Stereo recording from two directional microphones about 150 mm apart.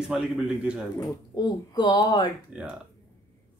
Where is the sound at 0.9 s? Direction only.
25° left (ahead or behind).